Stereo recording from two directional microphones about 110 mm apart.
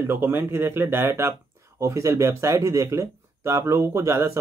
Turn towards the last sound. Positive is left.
turn(degrees=-25)  # may be behind; listen again after turning